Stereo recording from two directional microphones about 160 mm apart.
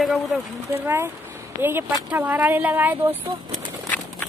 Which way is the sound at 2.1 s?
10° right (ahead or behind).